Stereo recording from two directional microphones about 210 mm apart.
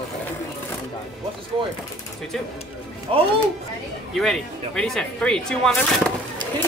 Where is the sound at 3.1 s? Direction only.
25° right (ahead or behind).